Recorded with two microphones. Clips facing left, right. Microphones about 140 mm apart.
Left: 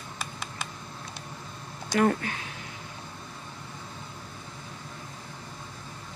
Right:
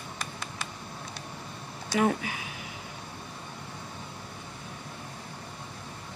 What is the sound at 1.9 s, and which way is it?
Speech, 5° right (ahead or behind).